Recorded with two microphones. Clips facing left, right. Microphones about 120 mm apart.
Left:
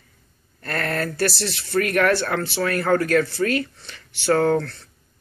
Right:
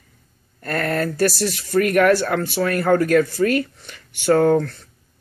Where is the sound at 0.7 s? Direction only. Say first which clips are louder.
Right 4 dB; 10° right (ahead or behind).